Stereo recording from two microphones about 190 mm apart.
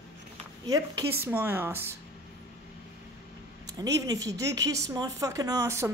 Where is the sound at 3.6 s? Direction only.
20° right (ahead or behind).